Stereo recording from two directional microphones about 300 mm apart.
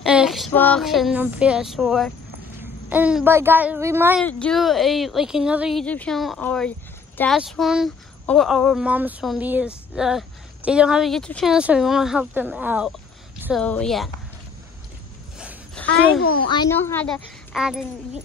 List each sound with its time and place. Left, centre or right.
0.0 s speech: centre
4.2 s speech: centre
15.3 s a sound: centre
16.2 s a child's voice: left
16.4 s speech: centre